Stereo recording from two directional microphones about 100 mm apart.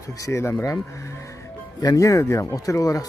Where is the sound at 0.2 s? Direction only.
25° left (ahead or behind).